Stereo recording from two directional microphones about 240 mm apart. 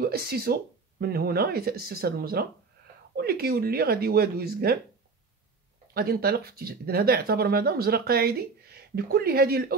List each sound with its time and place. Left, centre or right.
0.0 s speech: right
5.9 s speech: right